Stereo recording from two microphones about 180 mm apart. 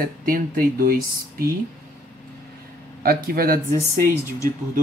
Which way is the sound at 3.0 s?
55° right (ahead or behind).